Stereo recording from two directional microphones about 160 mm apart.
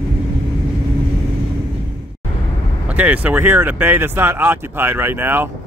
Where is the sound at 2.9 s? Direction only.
10° right (ahead or behind).